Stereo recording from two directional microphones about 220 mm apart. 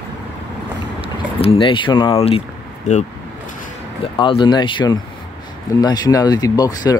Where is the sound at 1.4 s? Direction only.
25° left (ahead or behind).